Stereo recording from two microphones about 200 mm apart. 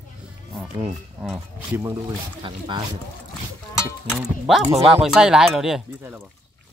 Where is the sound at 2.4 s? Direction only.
25° right (ahead or behind).